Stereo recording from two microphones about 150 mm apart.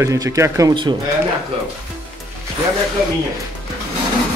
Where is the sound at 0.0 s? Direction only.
20° right (ahead or behind).